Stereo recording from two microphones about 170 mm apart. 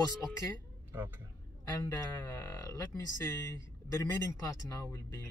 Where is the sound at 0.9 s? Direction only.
10° right (ahead or behind).